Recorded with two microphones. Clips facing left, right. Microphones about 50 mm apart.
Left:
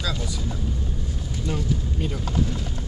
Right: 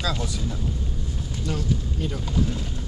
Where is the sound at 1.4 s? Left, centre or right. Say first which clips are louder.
Even; centre.